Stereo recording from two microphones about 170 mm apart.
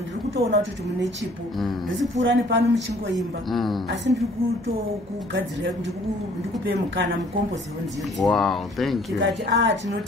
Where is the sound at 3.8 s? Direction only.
90° right.